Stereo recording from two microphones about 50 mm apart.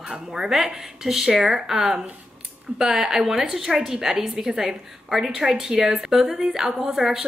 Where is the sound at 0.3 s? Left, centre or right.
Centre.